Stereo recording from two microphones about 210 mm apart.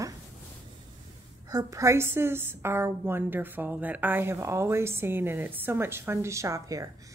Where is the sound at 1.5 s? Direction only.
15° right (ahead or behind).